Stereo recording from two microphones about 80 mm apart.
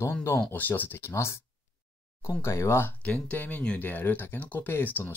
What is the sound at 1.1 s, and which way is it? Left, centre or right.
Speech, left.